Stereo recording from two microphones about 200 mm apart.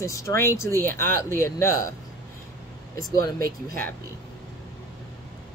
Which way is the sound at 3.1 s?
50° right (ahead or behind).